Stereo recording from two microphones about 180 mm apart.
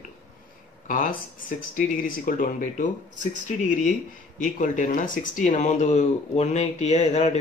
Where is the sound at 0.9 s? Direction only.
50° left (ahead or behind).